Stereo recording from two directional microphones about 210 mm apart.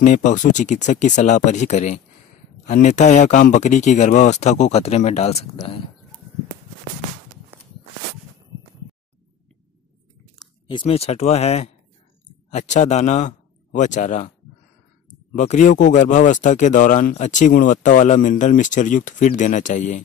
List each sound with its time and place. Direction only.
0.0 s speech: 35° left (ahead or behind)
10.4 s a sound: centre (ahead or behind)
10.8 s a man's voice: 30° left (ahead or behind)
15.3 s speech: 35° left (ahead or behind)